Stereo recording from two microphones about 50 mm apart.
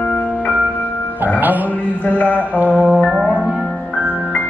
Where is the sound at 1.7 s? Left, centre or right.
Left.